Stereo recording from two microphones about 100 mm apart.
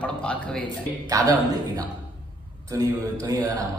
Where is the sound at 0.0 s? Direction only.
10° left (ahead or behind).